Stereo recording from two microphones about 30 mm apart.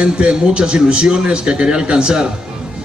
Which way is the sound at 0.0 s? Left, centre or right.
Right.